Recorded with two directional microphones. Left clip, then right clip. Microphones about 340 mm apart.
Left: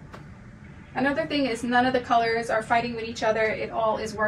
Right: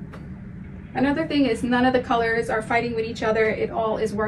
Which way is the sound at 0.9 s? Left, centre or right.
Centre.